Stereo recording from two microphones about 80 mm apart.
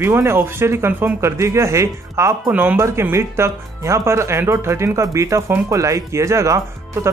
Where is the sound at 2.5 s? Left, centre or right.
Centre.